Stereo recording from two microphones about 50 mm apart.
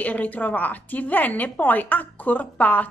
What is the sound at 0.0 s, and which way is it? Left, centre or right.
A woman's voice, left.